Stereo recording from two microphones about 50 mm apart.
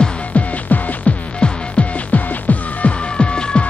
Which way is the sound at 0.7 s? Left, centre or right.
Left.